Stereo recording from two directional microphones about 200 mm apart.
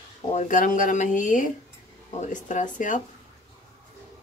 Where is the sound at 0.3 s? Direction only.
40° left (ahead or behind).